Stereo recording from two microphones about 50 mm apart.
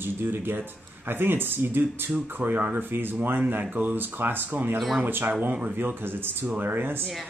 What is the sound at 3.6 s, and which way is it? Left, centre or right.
Speech, right.